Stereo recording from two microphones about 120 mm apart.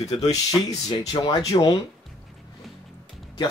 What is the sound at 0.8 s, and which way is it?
Speech, 35° left (ahead or behind).